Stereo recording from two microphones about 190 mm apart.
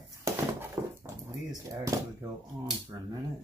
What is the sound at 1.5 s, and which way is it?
Speech, 15° right (ahead or behind).